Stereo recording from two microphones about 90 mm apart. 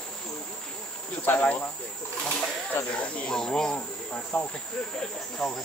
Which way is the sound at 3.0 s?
15° left (ahead or behind).